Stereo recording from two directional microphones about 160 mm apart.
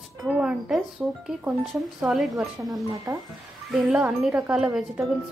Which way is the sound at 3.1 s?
20° right (ahead or behind).